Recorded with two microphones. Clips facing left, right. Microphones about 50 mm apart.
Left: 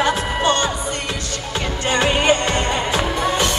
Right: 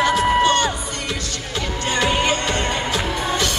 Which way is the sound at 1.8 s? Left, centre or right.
Left.